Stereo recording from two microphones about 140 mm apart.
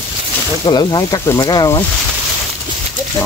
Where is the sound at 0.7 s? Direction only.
30° left (ahead or behind).